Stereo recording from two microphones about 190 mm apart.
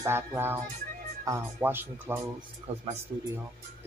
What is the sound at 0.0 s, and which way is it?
Speech, 10° right (ahead or behind).